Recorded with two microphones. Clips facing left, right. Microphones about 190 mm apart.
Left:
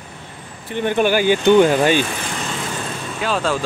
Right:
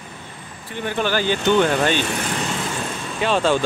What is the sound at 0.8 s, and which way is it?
Speech, 15° left (ahead or behind).